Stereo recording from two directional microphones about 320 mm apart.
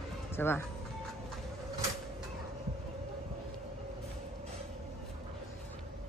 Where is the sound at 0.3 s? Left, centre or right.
Centre.